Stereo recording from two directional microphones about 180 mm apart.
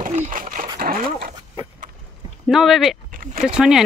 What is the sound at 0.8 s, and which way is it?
Speech, 50° right (ahead or behind).